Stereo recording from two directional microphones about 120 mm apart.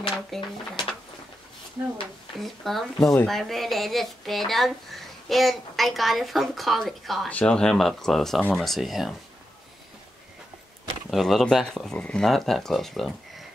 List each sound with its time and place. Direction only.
0.3 s a woman's voice: centre (ahead or behind)
1.8 s speech: 25° right (ahead or behind)
2.4 s a woman's voice: centre (ahead or behind)
11.1 s a woman's voice: centre (ahead or behind)